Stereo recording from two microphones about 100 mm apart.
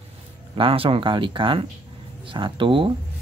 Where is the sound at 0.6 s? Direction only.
65° right (ahead or behind).